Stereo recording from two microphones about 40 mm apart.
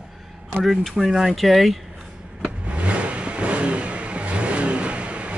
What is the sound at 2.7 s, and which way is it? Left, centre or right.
Vehicle, right.